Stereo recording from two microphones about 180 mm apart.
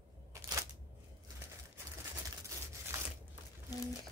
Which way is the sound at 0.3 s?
15° right (ahead or behind).